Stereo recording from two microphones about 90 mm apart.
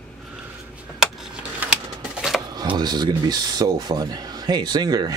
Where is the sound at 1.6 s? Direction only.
10° right (ahead or behind).